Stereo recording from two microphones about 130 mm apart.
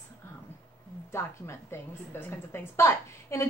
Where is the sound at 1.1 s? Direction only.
20° left (ahead or behind).